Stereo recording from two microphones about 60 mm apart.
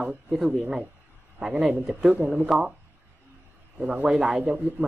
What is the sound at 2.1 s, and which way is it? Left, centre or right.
Speech, right.